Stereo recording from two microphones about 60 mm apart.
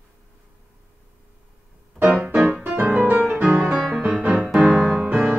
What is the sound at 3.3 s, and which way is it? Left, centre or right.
Music, centre.